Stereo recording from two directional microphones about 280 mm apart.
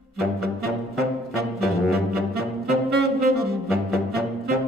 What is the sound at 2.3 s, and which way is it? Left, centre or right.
Saxophone, right.